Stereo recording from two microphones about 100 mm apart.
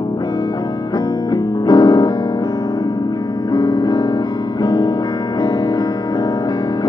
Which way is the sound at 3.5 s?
45° left (ahead or behind).